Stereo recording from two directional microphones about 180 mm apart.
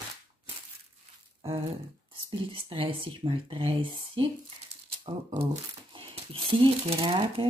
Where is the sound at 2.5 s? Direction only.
30° right (ahead or behind).